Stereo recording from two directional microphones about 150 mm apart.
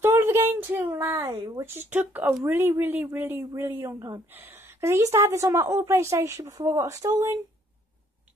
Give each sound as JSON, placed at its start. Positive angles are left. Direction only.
{"t": 0.0, "sound": "a sound", "side_deg": -15}
{"t": 1.1, "sound": "a woman's voice", "side_deg": -25}
{"t": 1.6, "sound": "a woman's voice", "side_deg": -15}